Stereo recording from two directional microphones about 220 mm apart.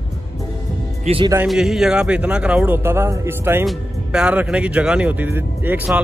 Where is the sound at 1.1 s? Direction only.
25° right (ahead or behind).